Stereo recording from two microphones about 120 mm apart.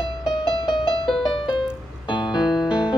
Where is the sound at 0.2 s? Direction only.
40° left (ahead or behind).